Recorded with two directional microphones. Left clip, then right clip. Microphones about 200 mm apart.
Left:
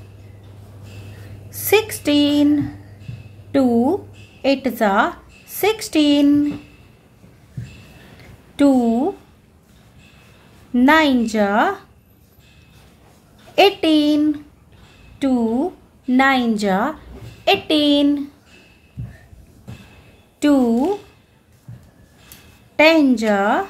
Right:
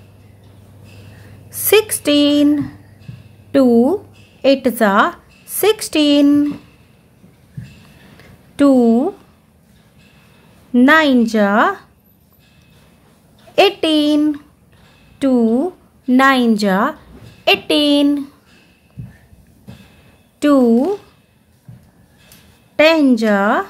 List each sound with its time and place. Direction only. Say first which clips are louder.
1.5 s speech: right 4 dB; 30° right (ahead or behind)
8.5 s a woman's voice: right 4 dB; 30° right (ahead or behind)
10.7 s a woman's voice: right 3 dB; 25° right (ahead or behind)
13.6 s a woman's voice: right 1 dB; 25° right (ahead or behind)
20.3 s a woman's voice: right 4 dB; 25° right (ahead or behind)
22.8 s a woman's voice: right 2 dB; 25° right (ahead or behind)